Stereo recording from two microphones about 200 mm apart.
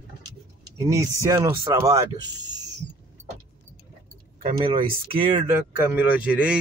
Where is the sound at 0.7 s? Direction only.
15° right (ahead or behind).